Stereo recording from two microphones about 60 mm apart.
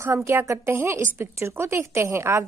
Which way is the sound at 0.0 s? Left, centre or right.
Right.